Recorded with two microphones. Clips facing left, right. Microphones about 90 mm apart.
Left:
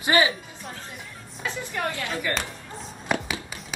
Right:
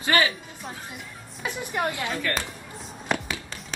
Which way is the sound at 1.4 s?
20° right (ahead or behind).